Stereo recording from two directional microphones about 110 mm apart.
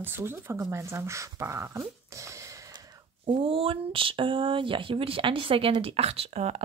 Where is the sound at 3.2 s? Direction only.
55° right (ahead or behind).